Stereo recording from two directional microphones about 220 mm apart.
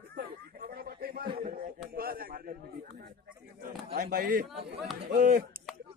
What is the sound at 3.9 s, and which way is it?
Speech, 45° right (ahead or behind).